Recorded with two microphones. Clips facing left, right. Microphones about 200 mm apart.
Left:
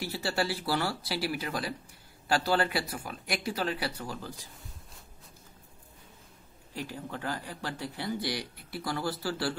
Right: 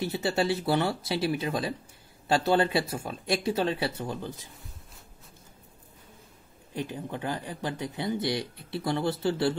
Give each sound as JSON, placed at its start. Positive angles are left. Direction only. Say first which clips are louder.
{"t": 0.0, "sound": "speech", "louder": "right 4 dB", "side_deg": -20}
{"t": 6.7, "sound": "speech", "louder": "right 4 dB", "side_deg": -20}